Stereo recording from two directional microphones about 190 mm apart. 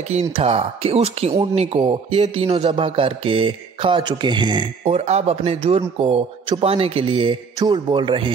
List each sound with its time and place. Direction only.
0.1 s speech: 35° right (ahead or behind)